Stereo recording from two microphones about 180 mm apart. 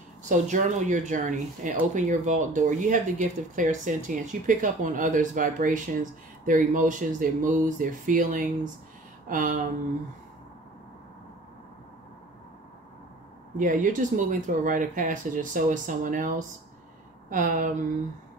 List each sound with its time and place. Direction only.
0.3 s speech: 45° right (ahead or behind)
13.6 s speech: 45° right (ahead or behind)